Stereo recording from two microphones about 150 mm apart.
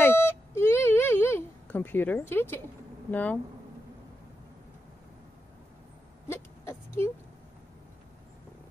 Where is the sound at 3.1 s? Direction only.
10° left (ahead or behind).